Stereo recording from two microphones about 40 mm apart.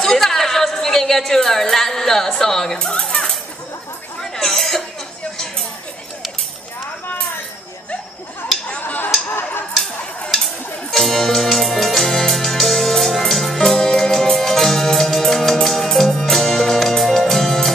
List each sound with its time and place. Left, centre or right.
0.0 s music: centre
2.9 s speech: left
4.2 s cough: centre
8.8 s a sound: left
9.3 s a sound: left
10.3 s music: centre